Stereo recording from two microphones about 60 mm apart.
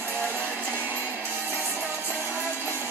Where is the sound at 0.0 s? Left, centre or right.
Right.